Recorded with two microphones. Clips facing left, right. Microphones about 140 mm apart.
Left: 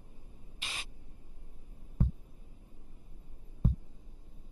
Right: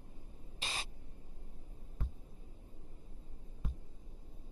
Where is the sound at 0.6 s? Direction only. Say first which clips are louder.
Right 3 dB; 35° right (ahead or behind).